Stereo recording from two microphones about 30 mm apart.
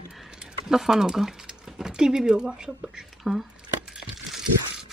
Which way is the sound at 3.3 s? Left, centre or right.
Centre.